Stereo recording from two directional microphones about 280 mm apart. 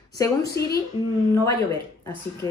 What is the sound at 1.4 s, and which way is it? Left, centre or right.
Speech, centre.